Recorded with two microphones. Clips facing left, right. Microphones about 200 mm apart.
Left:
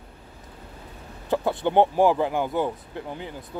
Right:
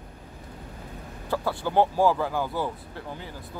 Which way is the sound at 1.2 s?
20° left (ahead or behind).